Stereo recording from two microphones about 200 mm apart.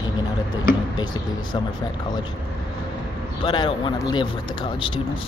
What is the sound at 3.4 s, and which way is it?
Speech, 25° left (ahead or behind).